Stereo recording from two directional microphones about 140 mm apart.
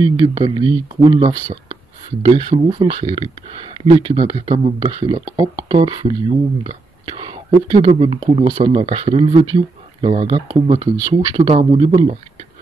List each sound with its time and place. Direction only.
0.0 s speech: 30° right (ahead or behind)
5.2 s speech: 30° right (ahead or behind)